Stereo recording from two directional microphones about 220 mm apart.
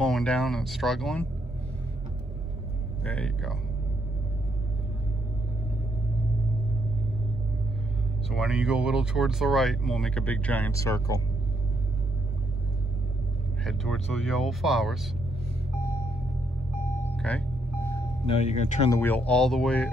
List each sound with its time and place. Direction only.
0.0 s speech: 5° left (ahead or behind)
3.0 s speech: 5° left (ahead or behind)
8.3 s speech: centre (ahead or behind); by 11.1 s 15° left (ahead or behind)
13.7 s speech: centre (ahead or behind)
17.2 s speech: 5° left (ahead or behind)
18.2 s speech: 30° left (ahead or behind)
18.9 s speech: 10° left (ahead or behind)